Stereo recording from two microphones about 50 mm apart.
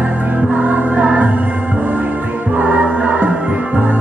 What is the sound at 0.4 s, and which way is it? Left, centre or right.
Music, right.